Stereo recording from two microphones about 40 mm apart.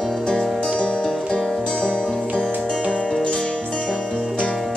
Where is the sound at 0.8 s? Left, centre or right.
Left.